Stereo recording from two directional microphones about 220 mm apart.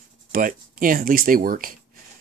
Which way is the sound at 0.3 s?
40° right (ahead or behind).